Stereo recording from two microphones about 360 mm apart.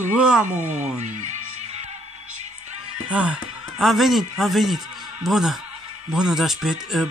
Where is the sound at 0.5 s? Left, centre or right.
Centre.